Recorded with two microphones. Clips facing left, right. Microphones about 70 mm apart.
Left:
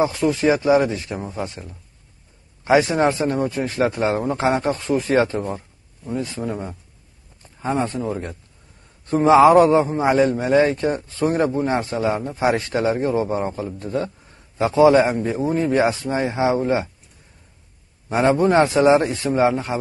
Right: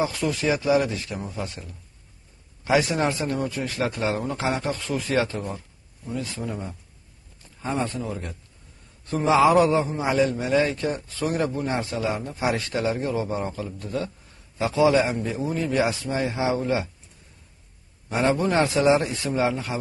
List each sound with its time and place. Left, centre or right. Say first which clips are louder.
0.0 s a man's voice: left 6 dB; left
18.0 s a man's voice: left 6 dB; left